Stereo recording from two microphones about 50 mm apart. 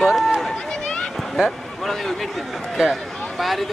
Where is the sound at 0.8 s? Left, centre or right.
Centre.